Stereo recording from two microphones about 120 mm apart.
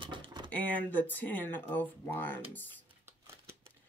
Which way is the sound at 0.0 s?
40° right (ahead or behind).